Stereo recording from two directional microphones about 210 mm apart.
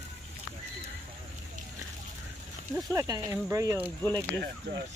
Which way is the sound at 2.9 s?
15° right (ahead or behind).